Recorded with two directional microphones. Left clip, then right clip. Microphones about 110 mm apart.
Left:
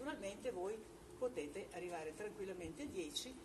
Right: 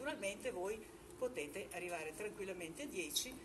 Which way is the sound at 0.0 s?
15° right (ahead or behind).